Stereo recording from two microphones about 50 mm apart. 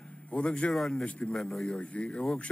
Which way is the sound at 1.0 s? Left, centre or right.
Centre.